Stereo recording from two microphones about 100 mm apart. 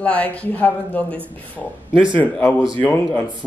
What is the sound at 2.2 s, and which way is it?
Speech, 15° left (ahead or behind).